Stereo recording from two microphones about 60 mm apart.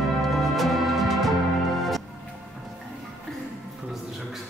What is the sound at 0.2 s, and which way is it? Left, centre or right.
Music, centre.